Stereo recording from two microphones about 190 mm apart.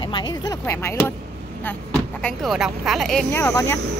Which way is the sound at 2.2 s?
Centre (ahead or behind).